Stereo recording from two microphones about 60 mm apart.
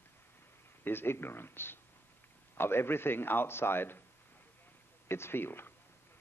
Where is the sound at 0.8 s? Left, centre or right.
Left.